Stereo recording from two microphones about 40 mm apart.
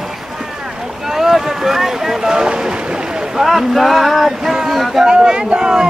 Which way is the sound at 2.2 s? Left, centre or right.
Centre.